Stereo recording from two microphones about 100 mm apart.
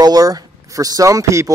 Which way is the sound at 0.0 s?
40° right (ahead or behind).